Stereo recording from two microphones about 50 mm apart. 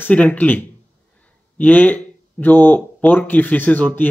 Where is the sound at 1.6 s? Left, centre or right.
Left.